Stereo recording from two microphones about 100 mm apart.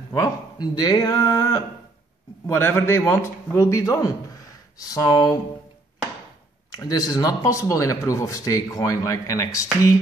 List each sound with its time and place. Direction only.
0.1 s speech: 40° left (ahead or behind)
2.4 s a man's voice: 25° left (ahead or behind); by 5.4 s 40° left (ahead or behind)
6.8 s speech: 40° left (ahead or behind)